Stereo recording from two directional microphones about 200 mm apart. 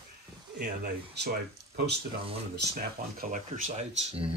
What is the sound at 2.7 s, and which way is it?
Speech, 40° right (ahead or behind).